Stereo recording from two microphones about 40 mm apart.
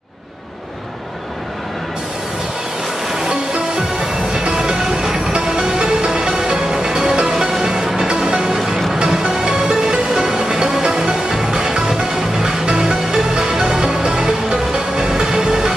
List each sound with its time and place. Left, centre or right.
3.2 s music: centre
8.5 s music: centre